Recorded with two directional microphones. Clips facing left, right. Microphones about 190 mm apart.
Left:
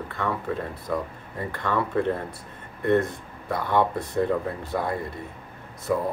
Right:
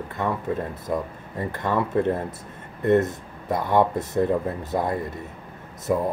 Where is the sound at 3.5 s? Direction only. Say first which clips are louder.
Right 3 dB; 20° right (ahead or behind).